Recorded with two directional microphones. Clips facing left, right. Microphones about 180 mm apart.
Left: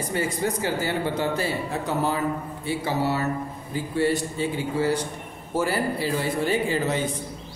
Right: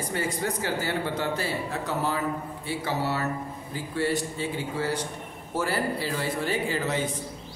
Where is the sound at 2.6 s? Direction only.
15° left (ahead or behind).